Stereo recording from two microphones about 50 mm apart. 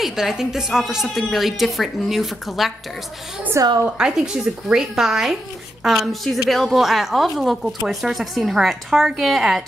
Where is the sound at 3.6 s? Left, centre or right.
Right.